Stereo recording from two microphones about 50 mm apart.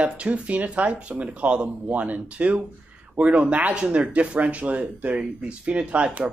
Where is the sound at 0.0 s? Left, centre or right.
Right.